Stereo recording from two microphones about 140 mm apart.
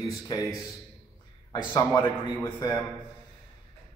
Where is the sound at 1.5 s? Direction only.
35° left (ahead or behind).